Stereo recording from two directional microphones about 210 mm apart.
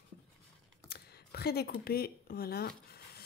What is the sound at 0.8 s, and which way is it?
Speech, 50° left (ahead or behind).